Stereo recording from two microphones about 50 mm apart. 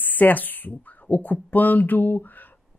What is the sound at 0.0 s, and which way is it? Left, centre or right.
Speech, left.